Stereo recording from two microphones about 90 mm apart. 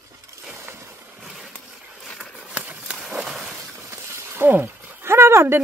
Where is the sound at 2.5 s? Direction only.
15° right (ahead or behind).